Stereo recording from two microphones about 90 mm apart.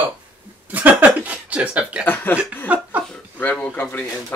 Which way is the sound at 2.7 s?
15° right (ahead or behind).